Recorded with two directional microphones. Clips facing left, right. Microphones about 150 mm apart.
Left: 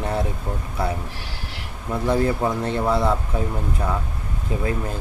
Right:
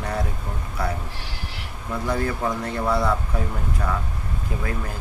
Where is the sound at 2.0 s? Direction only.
25° left (ahead or behind).